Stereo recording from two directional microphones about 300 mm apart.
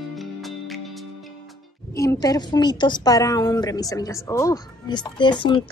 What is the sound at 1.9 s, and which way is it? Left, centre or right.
A woman's voice, centre.